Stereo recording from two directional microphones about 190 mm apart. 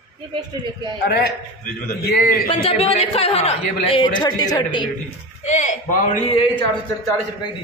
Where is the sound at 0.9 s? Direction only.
60° left (ahead or behind).